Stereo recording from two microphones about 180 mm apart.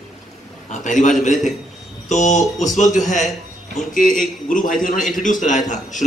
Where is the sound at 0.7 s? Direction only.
45° left (ahead or behind).